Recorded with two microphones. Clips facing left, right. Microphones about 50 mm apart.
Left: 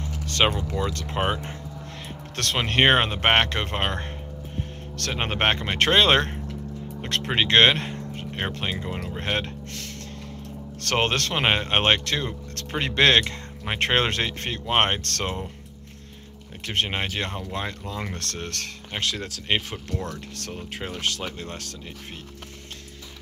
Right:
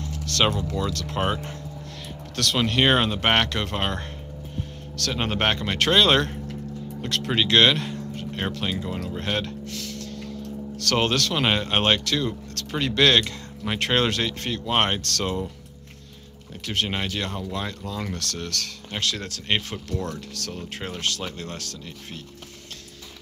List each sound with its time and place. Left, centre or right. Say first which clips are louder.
0.0 s speech: even; centre
2.3 s speech: right 1 dB; left
16.6 s speech: even; left
18.9 s speech: even; centre
19.9 s speech: right 2 dB; left
20.7 s speech: left 1 dB; centre